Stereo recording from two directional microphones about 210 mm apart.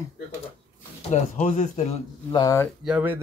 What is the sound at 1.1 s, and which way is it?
A man's voice, 35° left (ahead or behind).